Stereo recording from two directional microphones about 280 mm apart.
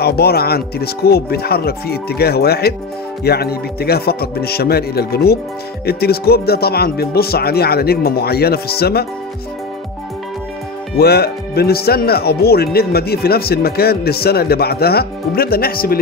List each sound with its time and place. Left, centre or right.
0.0 s speech: left
11.0 s speech: left